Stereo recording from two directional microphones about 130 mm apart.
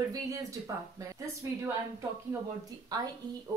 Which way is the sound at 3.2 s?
30° right (ahead or behind).